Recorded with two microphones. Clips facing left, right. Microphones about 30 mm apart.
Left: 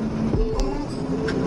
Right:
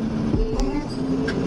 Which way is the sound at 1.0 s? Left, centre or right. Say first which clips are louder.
Right 1 dB; right.